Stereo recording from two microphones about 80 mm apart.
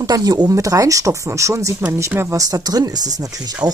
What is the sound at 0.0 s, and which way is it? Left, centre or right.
Speech, right.